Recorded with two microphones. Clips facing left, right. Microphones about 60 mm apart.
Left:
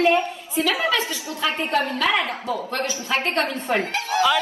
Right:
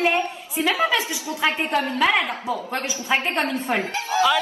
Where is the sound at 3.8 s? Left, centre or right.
Left.